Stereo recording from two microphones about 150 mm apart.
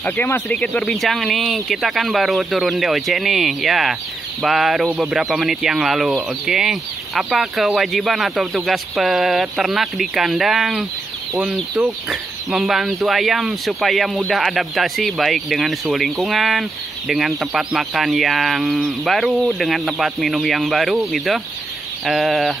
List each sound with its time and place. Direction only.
0.0 s speech: 10° left (ahead or behind)